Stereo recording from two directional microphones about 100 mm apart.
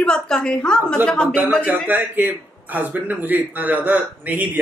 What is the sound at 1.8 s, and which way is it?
A man's voice, 20° right (ahead or behind).